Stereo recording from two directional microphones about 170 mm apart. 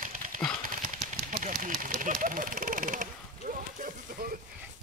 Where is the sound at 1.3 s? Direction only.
55° right (ahead or behind).